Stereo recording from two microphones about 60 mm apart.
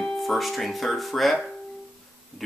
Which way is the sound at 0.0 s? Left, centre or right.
Centre.